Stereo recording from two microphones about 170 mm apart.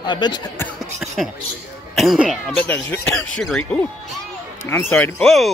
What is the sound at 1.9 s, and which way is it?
Speech, centre (ahead or behind).